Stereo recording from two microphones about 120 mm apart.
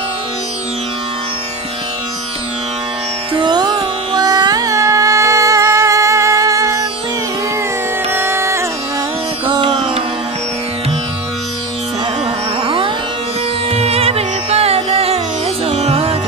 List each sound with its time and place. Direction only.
3.3 s music: 35° right (ahead or behind)
8.1 s music: 20° right (ahead or behind)
9.5 s music: 45° right (ahead or behind)
12.6 s music: 45° right (ahead or behind)
13.7 s music: 60° right (ahead or behind)